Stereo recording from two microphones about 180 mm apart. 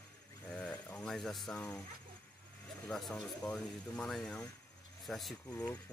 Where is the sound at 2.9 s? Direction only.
Centre (ahead or behind).